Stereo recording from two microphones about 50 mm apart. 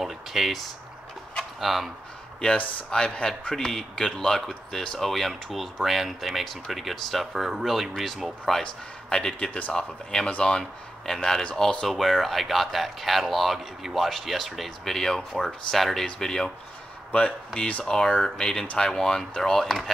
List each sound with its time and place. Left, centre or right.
0.0 s speech: centre
2.9 s speech: centre
3.5 s speech: centre
9.1 s speech: centre
17.6 s speech: left
17.8 s speech: centre